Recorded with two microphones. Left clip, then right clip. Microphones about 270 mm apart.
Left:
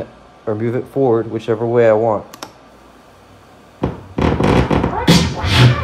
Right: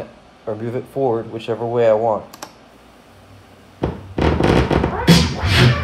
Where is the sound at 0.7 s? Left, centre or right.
Left.